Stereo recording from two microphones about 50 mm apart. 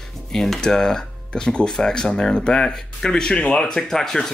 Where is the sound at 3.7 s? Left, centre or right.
Centre.